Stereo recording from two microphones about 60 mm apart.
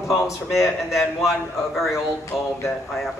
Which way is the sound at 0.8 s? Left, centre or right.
Centre.